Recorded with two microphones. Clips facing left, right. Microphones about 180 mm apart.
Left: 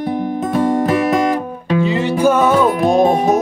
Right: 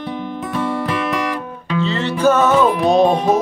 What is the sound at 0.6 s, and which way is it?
Music, 45° left (ahead or behind).